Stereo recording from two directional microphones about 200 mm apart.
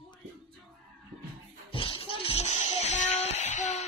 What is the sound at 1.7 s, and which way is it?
Music, 25° left (ahead or behind).